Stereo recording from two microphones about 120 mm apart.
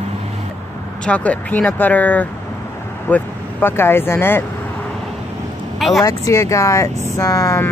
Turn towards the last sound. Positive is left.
turn(degrees=30)  # may be behind; listen again after turning